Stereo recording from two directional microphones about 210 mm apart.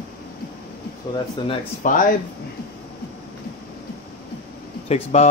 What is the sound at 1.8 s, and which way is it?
Speech, 40° left (ahead or behind).